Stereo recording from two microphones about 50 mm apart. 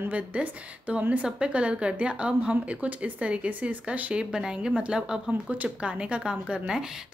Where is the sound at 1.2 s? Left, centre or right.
Right.